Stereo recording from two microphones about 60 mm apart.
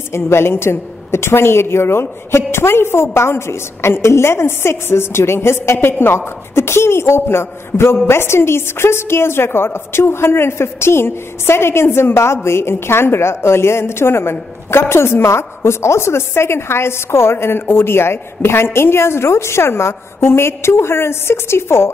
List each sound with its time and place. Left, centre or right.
0.1 s a woman's voice: left